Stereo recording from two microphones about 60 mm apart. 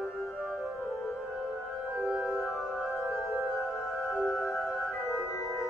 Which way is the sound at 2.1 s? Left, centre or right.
Centre.